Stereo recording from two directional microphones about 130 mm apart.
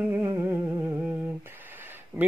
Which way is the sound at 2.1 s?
15° right (ahead or behind).